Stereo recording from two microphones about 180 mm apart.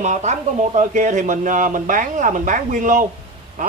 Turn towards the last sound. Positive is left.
turn(degrees=-45)  # may be behind; listen again after turning